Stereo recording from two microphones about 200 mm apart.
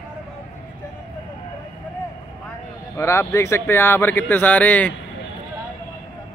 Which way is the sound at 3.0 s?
15° left (ahead or behind).